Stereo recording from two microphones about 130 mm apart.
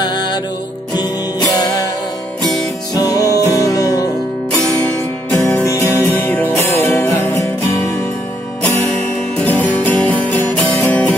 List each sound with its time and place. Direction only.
0.0 s music: 35° left (ahead or behind)
2.9 s music: 30° left (ahead or behind)
5.3 s music: 10° left (ahead or behind)
5.6 s music: 25° left (ahead or behind)
6.1 s music: 15° left (ahead or behind)
9.4 s music: 10° left (ahead or behind)